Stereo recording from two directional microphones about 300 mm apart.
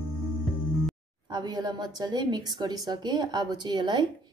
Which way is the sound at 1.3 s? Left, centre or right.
Centre.